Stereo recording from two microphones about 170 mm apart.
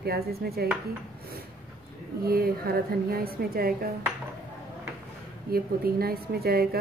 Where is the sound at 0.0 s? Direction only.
65° right (ahead or behind).